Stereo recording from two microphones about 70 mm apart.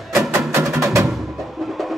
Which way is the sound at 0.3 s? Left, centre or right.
Right.